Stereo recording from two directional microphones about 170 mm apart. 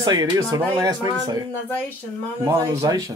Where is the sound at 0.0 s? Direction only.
20° right (ahead or behind).